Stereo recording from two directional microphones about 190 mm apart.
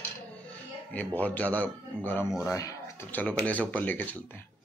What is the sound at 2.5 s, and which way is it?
Speech, 15° left (ahead or behind).